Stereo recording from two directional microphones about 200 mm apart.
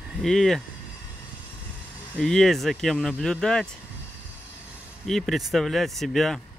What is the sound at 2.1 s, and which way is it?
Speech, 5° left (ahead or behind).